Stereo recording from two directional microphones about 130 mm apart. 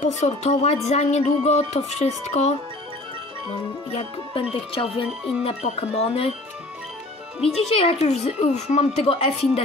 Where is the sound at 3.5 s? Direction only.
50° left (ahead or behind).